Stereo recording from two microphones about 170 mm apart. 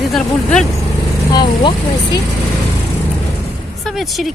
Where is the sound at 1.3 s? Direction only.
25° left (ahead or behind).